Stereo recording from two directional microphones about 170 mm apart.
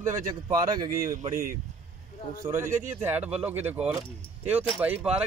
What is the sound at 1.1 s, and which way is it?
Speech, 55° right (ahead or behind).